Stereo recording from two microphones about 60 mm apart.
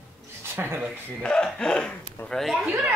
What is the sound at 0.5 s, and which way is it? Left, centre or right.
Speech, right.